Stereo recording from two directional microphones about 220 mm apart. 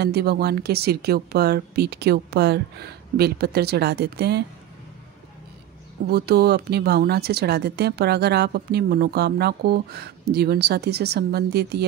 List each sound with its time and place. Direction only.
0.0 s speech: 45° right (ahead or behind)
6.0 s speech: 45° right (ahead or behind)